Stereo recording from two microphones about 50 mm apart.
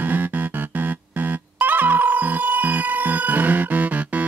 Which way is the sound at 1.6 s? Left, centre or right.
Right.